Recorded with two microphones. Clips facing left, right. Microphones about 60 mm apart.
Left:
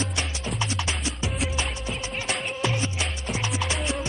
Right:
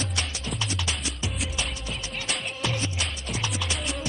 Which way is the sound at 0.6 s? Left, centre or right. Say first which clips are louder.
Left 3 dB; left.